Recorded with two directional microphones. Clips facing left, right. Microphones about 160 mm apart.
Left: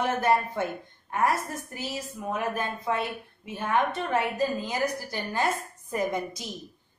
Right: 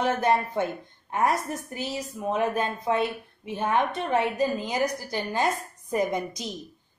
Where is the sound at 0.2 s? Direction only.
20° right (ahead or behind).